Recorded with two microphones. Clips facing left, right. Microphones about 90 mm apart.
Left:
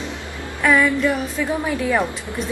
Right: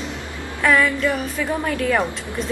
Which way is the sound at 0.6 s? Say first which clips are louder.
Left 1 dB; 5° left (ahead or behind).